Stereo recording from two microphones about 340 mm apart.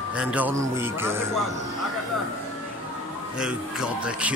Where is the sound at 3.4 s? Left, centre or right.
Centre.